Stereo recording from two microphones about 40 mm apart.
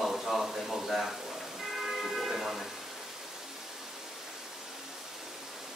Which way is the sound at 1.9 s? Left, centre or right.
Centre.